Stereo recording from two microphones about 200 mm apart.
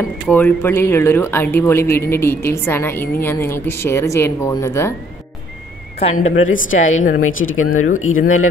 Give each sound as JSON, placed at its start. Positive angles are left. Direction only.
{"t": 0.3, "sound": "speech", "side_deg": 10}
{"t": 5.9, "sound": "speech", "side_deg": 35}
{"t": 7.2, "sound": "speech", "side_deg": 90}